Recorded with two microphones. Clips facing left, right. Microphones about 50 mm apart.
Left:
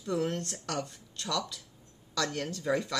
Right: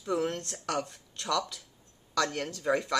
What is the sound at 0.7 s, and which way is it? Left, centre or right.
Speech, right.